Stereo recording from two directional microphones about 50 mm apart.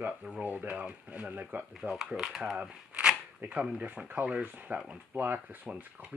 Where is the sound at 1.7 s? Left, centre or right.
Centre; by 5.2 s right.